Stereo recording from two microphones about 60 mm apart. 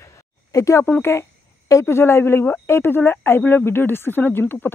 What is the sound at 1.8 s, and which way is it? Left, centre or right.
Speech, left.